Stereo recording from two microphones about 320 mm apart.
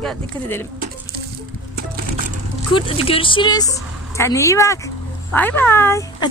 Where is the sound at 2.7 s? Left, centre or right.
Centre.